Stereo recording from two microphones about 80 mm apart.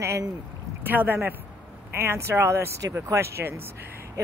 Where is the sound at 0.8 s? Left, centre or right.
Right.